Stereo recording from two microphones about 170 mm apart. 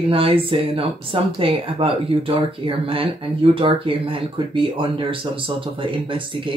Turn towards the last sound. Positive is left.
turn(degrees=-30)  # may be behind; listen again after turning